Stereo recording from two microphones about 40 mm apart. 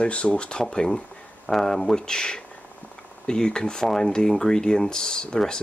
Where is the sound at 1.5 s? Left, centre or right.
Centre.